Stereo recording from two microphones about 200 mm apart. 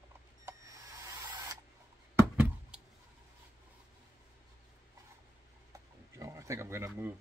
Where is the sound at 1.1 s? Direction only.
15° right (ahead or behind).